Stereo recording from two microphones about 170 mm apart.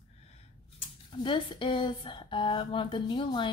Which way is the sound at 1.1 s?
30° left (ahead or behind).